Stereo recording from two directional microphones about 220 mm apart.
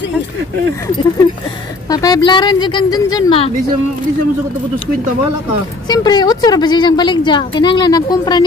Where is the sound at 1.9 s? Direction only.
15° left (ahead or behind).